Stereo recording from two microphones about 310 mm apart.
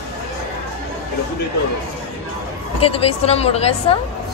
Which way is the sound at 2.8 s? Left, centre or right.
Centre.